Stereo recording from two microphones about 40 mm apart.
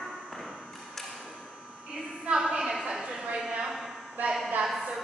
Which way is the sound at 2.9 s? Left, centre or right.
Centre.